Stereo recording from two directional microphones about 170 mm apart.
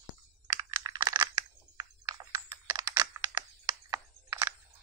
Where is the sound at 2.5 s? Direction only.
20° right (ahead or behind).